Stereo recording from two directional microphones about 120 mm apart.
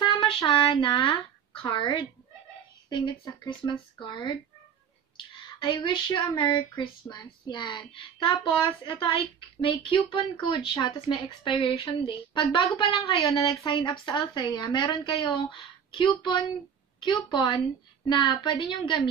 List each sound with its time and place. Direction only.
0.0 s a woman's voice: 45° left (ahead or behind)
5.1 s a sound: 45° left (ahead or behind)
5.8 s a woman's voice: 35° left (ahead or behind)